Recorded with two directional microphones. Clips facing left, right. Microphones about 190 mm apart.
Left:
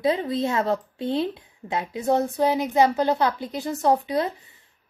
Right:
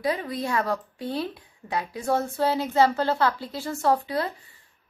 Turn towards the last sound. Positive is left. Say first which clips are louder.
# left 2 dB
turn(degrees=20)  # may be behind; listen again after turning